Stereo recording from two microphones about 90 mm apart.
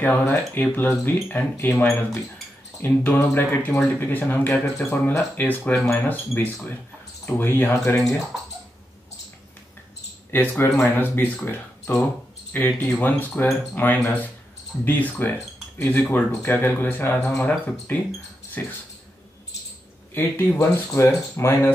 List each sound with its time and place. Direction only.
0.0 s speech: 20° left (ahead or behind)
10.3 s speech: 25° left (ahead or behind)
11.4 s a sound: 25° left (ahead or behind)
12.5 s speech: 20° left (ahead or behind)
20.2 s speech: 25° left (ahead or behind)